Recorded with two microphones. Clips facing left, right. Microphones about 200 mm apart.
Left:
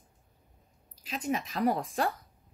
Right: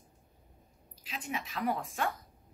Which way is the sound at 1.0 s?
40° left (ahead or behind).